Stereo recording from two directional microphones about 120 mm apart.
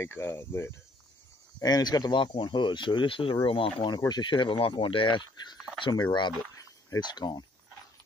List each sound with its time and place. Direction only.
0.0 s speech: 20° left (ahead or behind)
1.6 s speech: 35° left (ahead or behind)
6.5 s cricket: 30° left (ahead or behind)